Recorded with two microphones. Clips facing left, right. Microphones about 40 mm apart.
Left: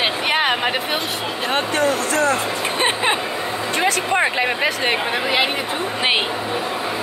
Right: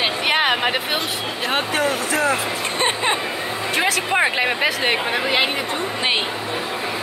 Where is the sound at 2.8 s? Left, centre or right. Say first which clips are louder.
Left 1 dB; centre.